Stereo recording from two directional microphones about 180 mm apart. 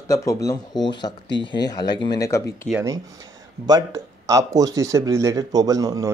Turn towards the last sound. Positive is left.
turn(degrees=-20)  # may be behind; listen again after turning